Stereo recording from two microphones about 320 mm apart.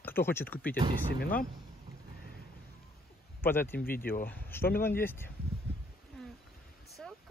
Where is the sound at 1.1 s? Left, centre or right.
Left.